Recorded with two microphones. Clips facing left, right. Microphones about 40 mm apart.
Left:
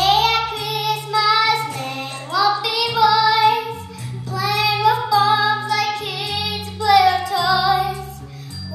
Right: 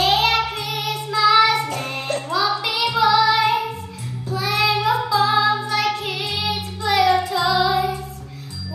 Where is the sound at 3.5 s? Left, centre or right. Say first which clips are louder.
Even; left.